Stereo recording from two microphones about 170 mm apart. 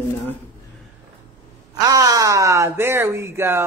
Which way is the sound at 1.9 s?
20° right (ahead or behind).